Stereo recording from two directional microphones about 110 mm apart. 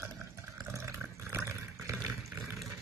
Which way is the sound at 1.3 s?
25° right (ahead or behind).